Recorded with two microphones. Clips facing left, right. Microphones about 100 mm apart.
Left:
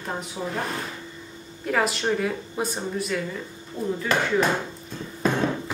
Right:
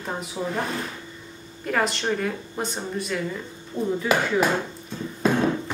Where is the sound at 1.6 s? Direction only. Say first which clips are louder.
Even; centre (ahead or behind).